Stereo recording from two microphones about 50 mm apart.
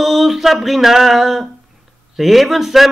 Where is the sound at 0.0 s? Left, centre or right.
Centre.